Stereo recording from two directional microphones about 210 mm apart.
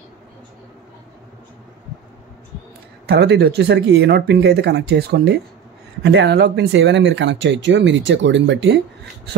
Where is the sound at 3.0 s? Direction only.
50° right (ahead or behind).